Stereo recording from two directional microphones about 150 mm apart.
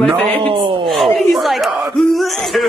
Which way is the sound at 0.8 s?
Centre (ahead or behind).